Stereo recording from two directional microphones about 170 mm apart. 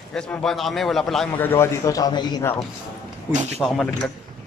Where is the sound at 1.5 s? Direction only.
15° left (ahead or behind).